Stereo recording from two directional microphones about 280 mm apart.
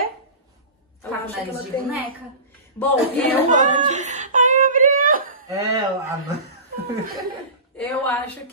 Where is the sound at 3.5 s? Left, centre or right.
Right.